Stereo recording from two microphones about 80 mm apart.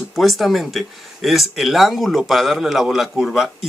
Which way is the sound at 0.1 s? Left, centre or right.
Centre.